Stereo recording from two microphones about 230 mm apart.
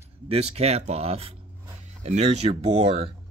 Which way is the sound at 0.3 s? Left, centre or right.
Right.